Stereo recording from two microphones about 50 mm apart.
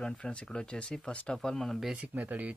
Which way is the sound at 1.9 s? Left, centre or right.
Right.